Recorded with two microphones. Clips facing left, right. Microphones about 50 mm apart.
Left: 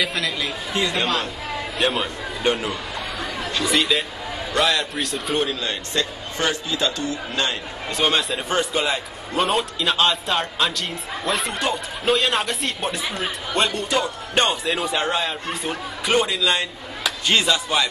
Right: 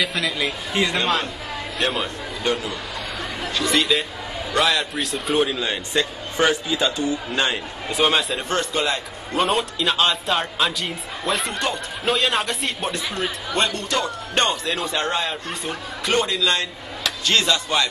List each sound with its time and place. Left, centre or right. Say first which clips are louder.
0.0 s a man's voice: right 1 dB; centre
1.8 s a man's voice: left 1 dB; centre
2.4 s a man's voice: left 2 dB; left
3.5 s a man's voice: right 1 dB; centre
8.0 s a man's voice: right 1 dB; centre